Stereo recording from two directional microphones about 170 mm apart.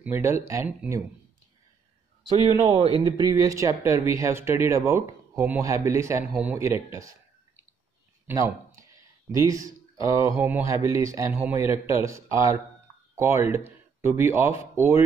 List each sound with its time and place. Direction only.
0.0 s speech: 15° right (ahead or behind)
2.4 s speech: 40° right (ahead or behind)
3.0 s speech: 25° right (ahead or behind)